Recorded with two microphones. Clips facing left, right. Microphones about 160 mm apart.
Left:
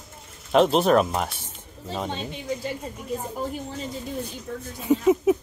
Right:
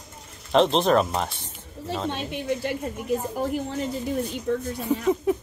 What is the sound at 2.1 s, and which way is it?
Speech, 65° right (ahead or behind).